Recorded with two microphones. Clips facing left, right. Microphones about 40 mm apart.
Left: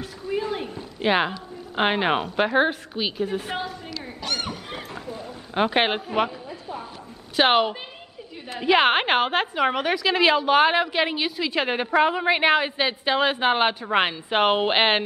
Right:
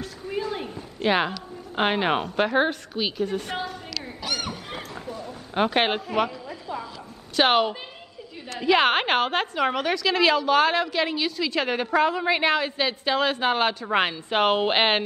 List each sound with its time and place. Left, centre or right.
0.9 s a woman's voice: centre
4.2 s a sound: centre
5.5 s a woman's voice: centre
7.3 s a woman's voice: centre